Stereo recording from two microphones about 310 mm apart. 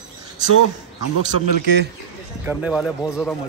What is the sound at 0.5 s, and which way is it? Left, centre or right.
Speech, left.